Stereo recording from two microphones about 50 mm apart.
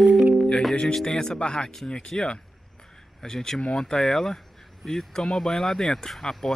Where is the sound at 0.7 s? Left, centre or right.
Centre.